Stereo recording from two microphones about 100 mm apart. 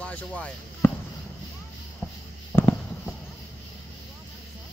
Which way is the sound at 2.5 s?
20° left (ahead or behind).